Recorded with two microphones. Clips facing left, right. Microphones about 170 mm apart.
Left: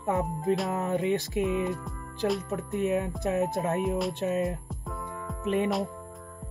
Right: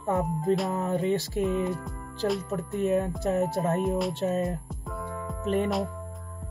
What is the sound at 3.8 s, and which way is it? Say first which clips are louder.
Music: right 1 dB; centre (ahead or behind).